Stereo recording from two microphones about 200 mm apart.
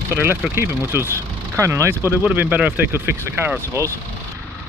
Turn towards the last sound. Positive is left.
turn(degrees=-15)  # may be behind; listen again after turning